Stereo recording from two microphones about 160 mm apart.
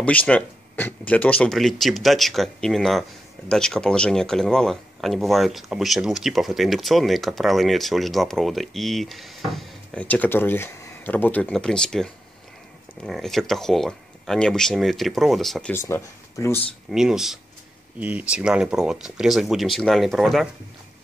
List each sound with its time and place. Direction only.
0.0 s speech: 10° left (ahead or behind)
15.7 s speech: 15° left (ahead or behind)
16.9 s speech: 5° right (ahead or behind)